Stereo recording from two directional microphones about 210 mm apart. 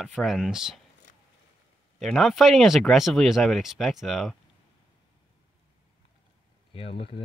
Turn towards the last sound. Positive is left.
turn(degrees=25)  # may be behind; listen again after turning